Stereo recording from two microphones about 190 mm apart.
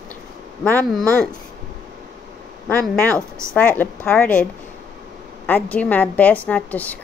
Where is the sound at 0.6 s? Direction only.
10° left (ahead or behind).